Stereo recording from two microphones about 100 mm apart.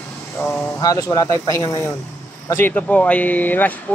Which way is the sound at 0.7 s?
35° left (ahead or behind).